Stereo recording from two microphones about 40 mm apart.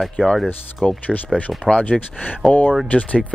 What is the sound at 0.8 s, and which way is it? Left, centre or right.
Speech, left.